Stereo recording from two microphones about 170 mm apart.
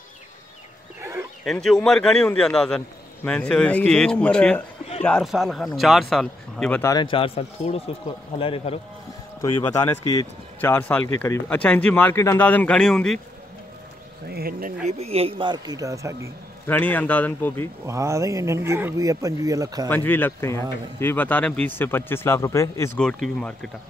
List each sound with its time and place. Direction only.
1.4 s speech: centre (ahead or behind)
6.8 s speech: 25° left (ahead or behind)
9.4 s speech: 15° left (ahead or behind)
14.3 s speech: 60° right (ahead or behind)
15.0 s speech: 35° right (ahead or behind); by 16.3 s 20° right (ahead or behind)
16.6 s speech: 10° left (ahead or behind)
17.8 s speech: 15° right (ahead or behind)
19.9 s speech: 10° left (ahead or behind)
22.9 s speech: 5° left (ahead or behind)